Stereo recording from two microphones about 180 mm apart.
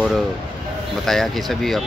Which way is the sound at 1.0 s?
Centre (ahead or behind).